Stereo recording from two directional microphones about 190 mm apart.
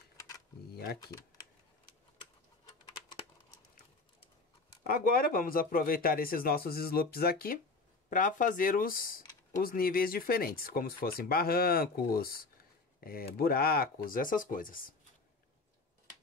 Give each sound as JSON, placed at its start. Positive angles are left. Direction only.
{"t": 1.0, "sound": "speech", "side_deg": 20}
{"t": 2.9, "sound": "typing", "side_deg": 25}
{"t": 4.8, "sound": "speech", "side_deg": 50}